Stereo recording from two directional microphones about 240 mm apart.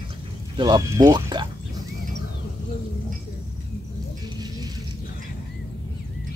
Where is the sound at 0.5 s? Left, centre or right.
Centre.